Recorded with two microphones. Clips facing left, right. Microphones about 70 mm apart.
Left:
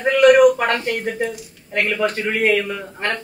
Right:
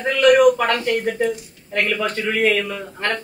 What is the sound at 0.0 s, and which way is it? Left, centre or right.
A man's voice, left.